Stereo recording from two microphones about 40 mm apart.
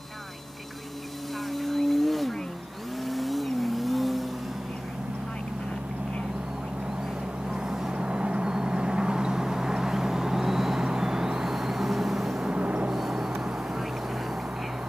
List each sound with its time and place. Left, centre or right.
1.5 s a sound: centre
3.0 s vehicle: centre
7.6 s vehicle: centre
7.9 s vehicle: right; by 12.4 s centre
12.4 s vehicle: right
12.9 s vehicle: centre